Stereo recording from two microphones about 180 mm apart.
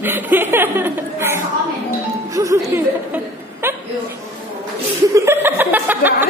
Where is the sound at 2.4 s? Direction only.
15° right (ahead or behind).